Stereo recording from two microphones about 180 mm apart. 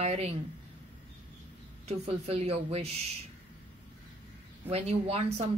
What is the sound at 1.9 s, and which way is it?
Speech, 35° right (ahead or behind).